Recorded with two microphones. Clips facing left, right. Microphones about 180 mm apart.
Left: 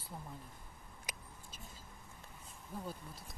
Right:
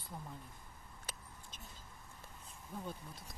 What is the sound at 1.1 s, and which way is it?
Vehicle, 15° left (ahead or behind).